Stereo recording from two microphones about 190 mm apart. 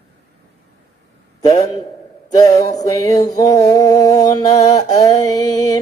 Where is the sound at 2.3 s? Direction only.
20° left (ahead or behind).